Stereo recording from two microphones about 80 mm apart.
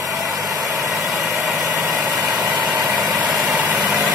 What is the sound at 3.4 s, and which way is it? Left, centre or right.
Vehicle, right.